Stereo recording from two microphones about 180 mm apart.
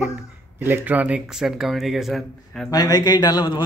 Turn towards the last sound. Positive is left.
turn(degrees=25)  # may be behind; listen again after turning